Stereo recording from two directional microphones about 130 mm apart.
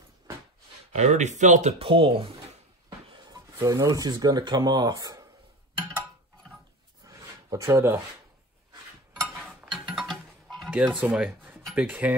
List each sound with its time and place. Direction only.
0.9 s speech: 60° right (ahead or behind); by 2.3 s 40° right (ahead or behind)
3.1 s music: 30° right (ahead or behind)
3.5 s speech: 25° right (ahead or behind)
7.0 s a sound: 25° right (ahead or behind)
7.5 s speech: 20° right (ahead or behind)
9.1 s a sound: 10° right (ahead or behind)
9.7 s music: 5° right (ahead or behind)
11.0 s speech: 10° right (ahead or behind)